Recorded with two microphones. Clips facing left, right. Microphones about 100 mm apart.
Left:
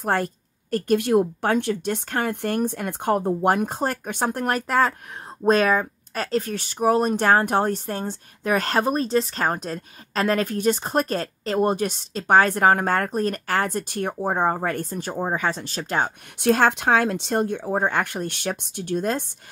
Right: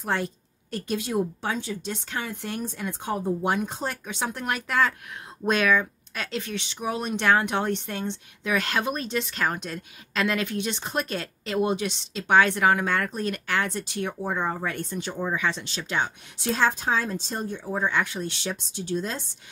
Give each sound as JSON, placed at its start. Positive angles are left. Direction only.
{"t": 0.0, "sound": "speech", "side_deg": 50}
{"t": 16.3, "sound": "speech", "side_deg": 60}